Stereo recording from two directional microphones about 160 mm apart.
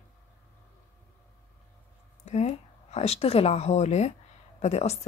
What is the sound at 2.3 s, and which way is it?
A woman's voice, 45° left (ahead or behind).